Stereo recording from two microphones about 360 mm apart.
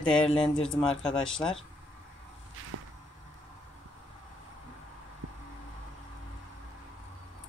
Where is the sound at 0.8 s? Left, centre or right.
Centre.